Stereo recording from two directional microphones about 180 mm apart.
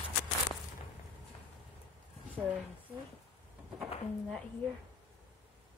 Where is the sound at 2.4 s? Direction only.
5° right (ahead or behind).